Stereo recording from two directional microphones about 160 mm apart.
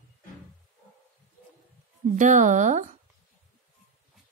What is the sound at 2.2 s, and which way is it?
Speech, 50° right (ahead or behind).